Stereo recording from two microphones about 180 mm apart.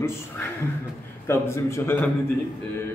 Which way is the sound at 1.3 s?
15° left (ahead or behind).